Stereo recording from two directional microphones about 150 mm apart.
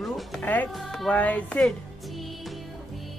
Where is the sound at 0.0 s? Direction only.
Centre (ahead or behind).